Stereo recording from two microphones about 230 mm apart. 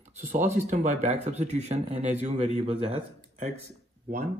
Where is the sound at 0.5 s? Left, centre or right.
Right.